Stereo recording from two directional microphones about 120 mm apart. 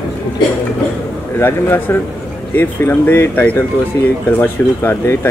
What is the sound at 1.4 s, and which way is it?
Speech, 20° left (ahead or behind).